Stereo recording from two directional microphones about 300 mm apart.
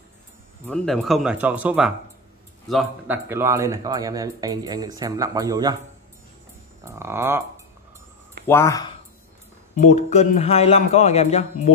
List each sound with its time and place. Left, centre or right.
0.7 s a man's voice: centre
6.8 s speech: centre
8.5 s speech: centre
9.8 s speech: left